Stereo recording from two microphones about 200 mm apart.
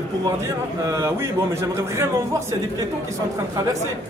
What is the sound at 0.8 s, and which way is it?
A man's voice, 15° right (ahead or behind).